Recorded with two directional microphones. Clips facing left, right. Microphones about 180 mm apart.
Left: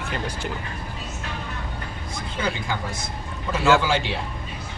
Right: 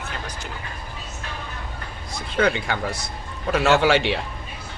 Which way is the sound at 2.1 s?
70° right (ahead or behind).